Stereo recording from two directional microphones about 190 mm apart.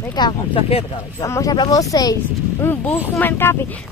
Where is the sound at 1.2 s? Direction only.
15° left (ahead or behind).